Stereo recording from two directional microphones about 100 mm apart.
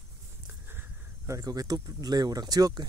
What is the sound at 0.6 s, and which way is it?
Speech, 20° right (ahead or behind).